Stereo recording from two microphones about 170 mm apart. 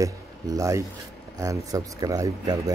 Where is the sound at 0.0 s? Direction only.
20° right (ahead or behind).